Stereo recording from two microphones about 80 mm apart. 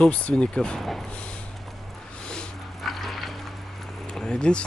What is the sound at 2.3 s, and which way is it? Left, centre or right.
Dog, centre.